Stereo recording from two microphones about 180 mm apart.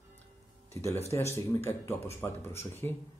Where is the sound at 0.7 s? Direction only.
15° left (ahead or behind).